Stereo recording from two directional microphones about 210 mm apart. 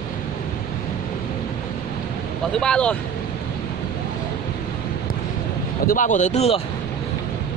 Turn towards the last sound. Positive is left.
turn(degrees=30)  # may be behind; listen again after turning